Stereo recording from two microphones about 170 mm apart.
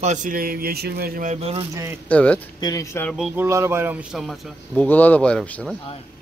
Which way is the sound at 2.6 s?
20° left (ahead or behind).